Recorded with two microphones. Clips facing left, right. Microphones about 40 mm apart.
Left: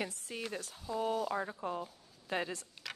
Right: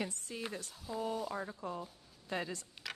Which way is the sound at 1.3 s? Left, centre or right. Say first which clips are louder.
Left 4 dB; left.